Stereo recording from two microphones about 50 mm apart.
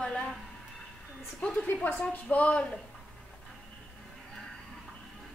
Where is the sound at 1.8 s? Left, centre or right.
Left.